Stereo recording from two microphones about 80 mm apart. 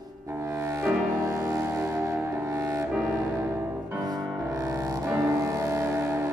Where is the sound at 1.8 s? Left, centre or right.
Right.